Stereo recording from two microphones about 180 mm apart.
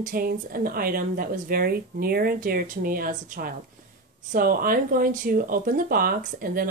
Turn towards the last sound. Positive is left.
turn(degrees=-50)  # may be behind; listen again after turning